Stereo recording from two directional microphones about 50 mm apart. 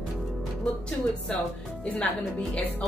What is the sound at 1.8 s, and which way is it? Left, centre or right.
Speech, left.